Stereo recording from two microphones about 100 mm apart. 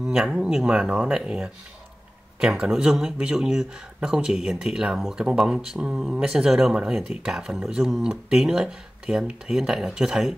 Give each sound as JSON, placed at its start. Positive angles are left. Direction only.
{"t": 0.0, "sound": "speech", "side_deg": -5}